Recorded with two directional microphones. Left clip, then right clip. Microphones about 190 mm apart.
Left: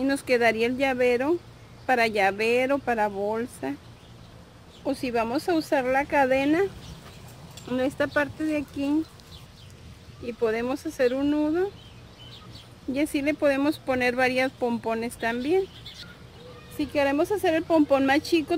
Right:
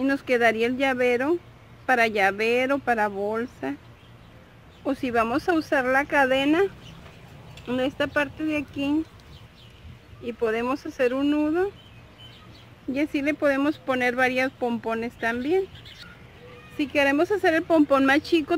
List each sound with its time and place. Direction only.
0.0 s speech: 20° right (ahead or behind)
4.8 s speech: 25° right (ahead or behind)
10.2 s speech: 25° right (ahead or behind)
12.9 s speech: 10° right (ahead or behind)
16.7 s speech: 25° right (ahead or behind)